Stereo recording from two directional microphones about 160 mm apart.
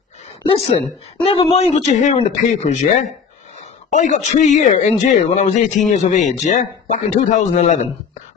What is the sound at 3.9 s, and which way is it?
Speech, 50° left (ahead or behind).